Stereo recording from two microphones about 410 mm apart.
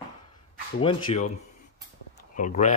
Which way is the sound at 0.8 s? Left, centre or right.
Centre.